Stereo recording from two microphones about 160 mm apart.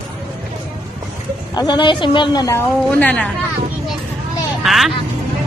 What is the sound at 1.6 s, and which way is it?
A woman's voice, 30° left (ahead or behind).